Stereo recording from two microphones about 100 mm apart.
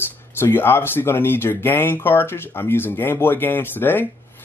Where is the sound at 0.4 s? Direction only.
25° left (ahead or behind).